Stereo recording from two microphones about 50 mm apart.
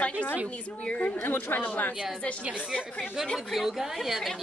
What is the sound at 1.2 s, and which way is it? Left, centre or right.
Speech, left.